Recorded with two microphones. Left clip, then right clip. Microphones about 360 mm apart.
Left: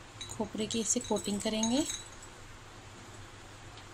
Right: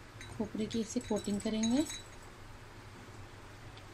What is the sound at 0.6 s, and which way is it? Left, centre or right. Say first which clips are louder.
Speech: left 5 dB; left.